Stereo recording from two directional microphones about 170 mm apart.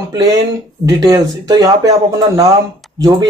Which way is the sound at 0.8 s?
25° right (ahead or behind).